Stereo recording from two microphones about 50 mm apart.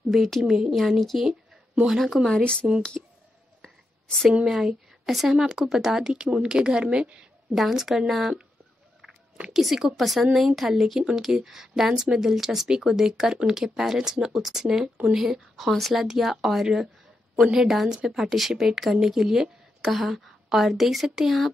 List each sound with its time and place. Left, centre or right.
0.1 s a woman's voice: centre
2.3 s speech: left
2.9 s clicking: centre
3.6 s whispering: centre
4.5 s speech: centre
7.5 s a woman's voice: centre
9.5 s a woman's voice: centre
17.4 s speech: centre
19.8 s a woman's voice: centre